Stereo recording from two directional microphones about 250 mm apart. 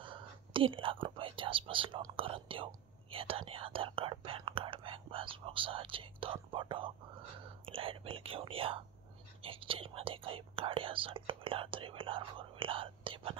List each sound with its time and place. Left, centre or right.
0.0 s whispering: centre
1.0 s speech: right